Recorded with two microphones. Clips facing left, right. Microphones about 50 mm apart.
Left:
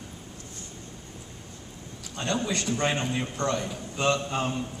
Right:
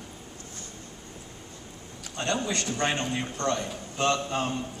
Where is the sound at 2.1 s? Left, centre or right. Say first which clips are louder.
Even; centre.